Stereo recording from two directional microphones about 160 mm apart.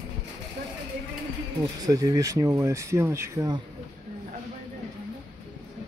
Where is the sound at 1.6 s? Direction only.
25° right (ahead or behind).